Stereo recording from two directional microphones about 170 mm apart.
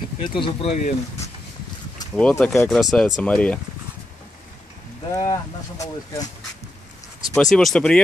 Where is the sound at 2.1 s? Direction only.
5° left (ahead or behind).